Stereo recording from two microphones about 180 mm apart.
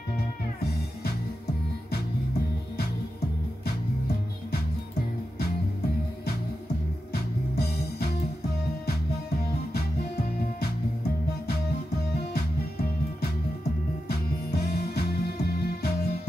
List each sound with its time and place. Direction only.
7.1 s music: 60° left (ahead or behind)
9.9 s music: 60° left (ahead or behind)
14.0 s music: 60° left (ahead or behind)